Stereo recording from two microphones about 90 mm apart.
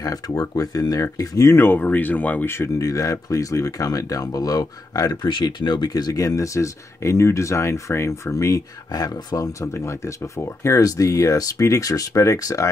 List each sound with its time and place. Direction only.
0.0 s speech: 45° left (ahead or behind)
1.5 s speech: 25° left (ahead or behind); by 5.3 s 45° left (ahead or behind)
5.3 s speech: 55° left (ahead or behind); by 12.6 s 40° left (ahead or behind)